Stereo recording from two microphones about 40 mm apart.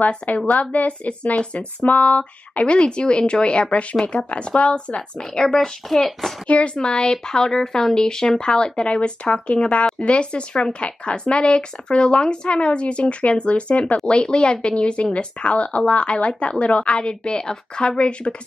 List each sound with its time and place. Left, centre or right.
0.5 s speech: left; by 5.7 s centre
5.9 s a child's voice: centre
6.4 s speech: left